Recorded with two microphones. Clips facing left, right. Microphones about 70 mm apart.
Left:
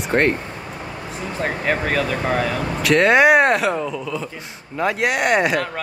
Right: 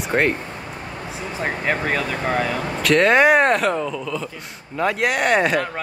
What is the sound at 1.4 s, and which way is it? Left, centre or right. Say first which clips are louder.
Speech: left 1 dB; centre.